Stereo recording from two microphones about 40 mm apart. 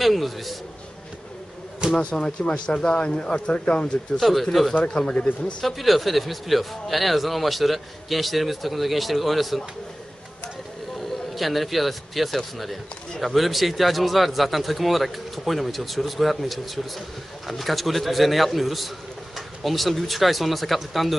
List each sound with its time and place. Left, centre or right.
0.0 s speech: centre
2.0 s speech: left
4.2 s speech: centre
4.8 s speech: left
5.6 s speech: centre
11.3 s speech: centre